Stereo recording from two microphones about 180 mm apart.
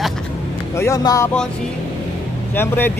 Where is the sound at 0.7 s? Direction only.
15° left (ahead or behind).